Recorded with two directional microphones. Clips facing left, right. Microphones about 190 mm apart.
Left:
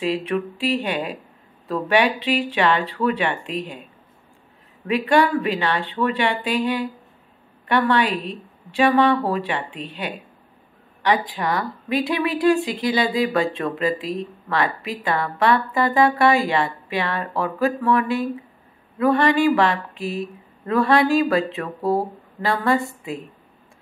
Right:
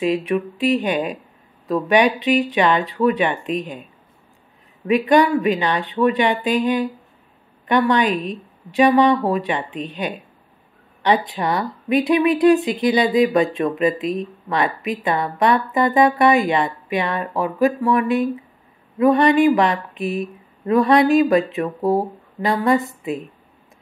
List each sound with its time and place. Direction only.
0.0 s speech: 15° right (ahead or behind)
4.8 s speech: 15° right (ahead or behind)